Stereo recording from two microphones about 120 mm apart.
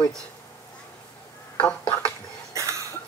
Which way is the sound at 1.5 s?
10° left (ahead or behind).